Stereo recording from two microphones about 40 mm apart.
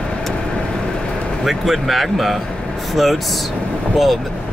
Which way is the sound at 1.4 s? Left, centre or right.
Centre.